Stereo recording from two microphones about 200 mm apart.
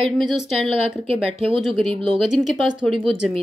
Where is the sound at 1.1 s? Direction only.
30° right (ahead or behind).